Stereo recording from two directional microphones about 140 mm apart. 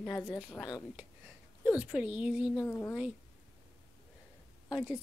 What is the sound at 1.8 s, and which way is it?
Speech, 10° right (ahead or behind).